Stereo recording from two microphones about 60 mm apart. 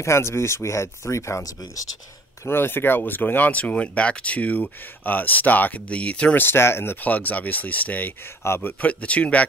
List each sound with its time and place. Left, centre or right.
0.0 s speech: left
2.4 s speech: left; by 6.3 s centre
6.3 s speech: left
8.5 s speech: left
8.8 s speech: left